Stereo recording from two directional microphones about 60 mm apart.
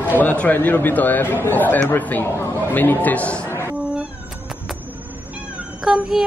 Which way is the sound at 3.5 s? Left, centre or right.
Left.